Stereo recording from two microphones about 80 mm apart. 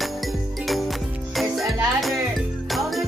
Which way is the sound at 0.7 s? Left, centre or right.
Centre.